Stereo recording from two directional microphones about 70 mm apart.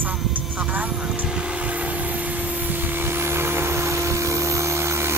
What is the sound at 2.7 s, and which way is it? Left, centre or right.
Aircraft, right.